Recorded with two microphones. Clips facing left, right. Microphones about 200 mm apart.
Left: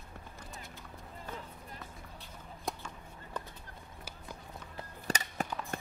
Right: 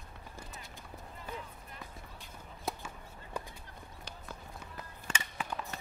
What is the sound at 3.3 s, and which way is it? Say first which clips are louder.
Horse: right 1 dB; 10° right (ahead or behind).